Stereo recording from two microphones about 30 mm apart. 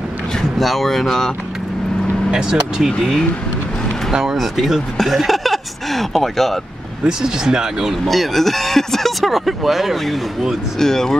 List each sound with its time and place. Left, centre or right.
0.4 s speech: centre
2.3 s speech: centre
4.1 s speech: centre
4.4 s speech: centre
7.1 s speech: right
8.1 s speech: centre
9.2 s speech: centre
10.8 s speech: centre